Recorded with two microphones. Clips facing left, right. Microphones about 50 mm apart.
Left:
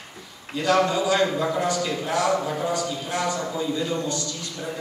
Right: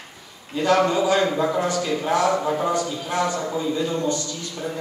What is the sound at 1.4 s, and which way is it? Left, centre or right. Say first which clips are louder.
Speech: right 2 dB; centre.